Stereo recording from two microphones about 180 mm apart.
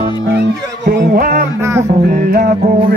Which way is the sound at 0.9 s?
60° right (ahead or behind).